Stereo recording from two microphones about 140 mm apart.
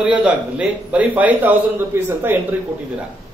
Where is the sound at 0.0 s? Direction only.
10° right (ahead or behind).